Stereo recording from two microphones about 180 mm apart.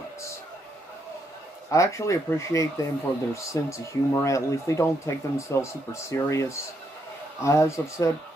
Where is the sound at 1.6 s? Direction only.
15° left (ahead or behind).